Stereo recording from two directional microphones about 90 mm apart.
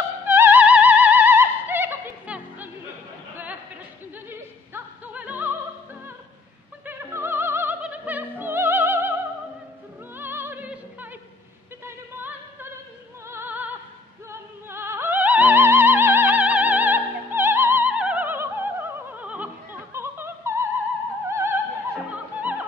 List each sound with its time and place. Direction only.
0.2 s music: 20° right (ahead or behind)
2.2 s music: 15° right (ahead or behind)
4.3 s opera: 20° right (ahead or behind)
6.9 s opera: 30° right (ahead or behind)
10.1 s music: 25° right (ahead or behind)
13.3 s opera: 25° right (ahead or behind)
14.3 s music: 30° right (ahead or behind)
17.9 s opera: 15° right (ahead or behind)
19.9 s a sound: 30° right (ahead or behind)
21.3 s opera: 30° right (ahead or behind)
22.1 s music: 20° right (ahead or behind)